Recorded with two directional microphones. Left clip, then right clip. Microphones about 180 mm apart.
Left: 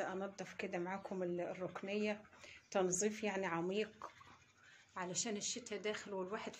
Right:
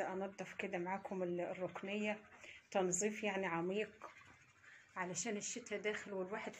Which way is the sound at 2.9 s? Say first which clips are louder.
Even; centre (ahead or behind).